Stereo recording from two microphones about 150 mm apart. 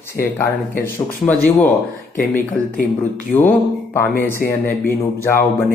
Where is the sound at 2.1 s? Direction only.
65° left (ahead or behind).